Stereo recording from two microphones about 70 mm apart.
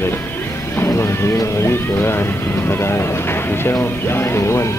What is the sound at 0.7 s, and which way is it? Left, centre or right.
Music, left.